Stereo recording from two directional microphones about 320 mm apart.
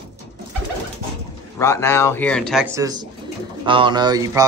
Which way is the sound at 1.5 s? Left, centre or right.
Centre.